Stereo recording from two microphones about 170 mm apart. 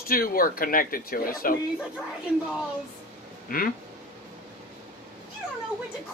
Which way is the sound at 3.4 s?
55° left (ahead or behind).